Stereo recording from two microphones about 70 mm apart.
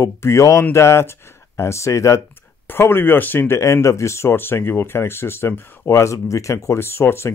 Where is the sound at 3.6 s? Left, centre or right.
Left.